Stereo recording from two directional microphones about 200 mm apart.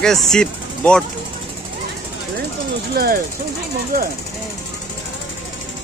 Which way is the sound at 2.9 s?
45° right (ahead or behind).